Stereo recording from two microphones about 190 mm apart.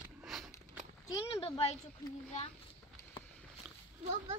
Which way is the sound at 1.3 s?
30° left (ahead or behind).